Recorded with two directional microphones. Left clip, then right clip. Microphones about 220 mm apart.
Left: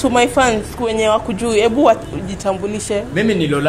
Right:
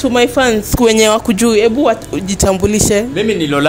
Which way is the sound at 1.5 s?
25° right (ahead or behind).